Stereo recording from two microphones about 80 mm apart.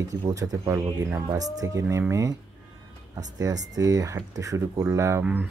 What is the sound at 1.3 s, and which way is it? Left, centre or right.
Speech, right.